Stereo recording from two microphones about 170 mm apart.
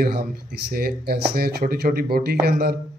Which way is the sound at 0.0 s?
65° right (ahead or behind).